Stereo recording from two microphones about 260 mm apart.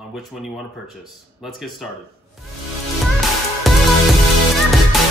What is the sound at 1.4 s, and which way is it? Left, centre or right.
Speech, centre.